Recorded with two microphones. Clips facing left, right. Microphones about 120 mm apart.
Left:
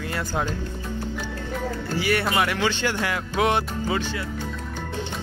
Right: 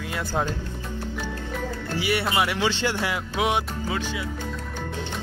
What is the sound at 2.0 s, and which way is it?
Speech, 20° right (ahead or behind).